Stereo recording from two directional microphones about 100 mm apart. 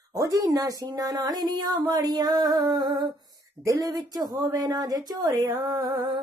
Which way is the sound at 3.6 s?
35° right (ahead or behind).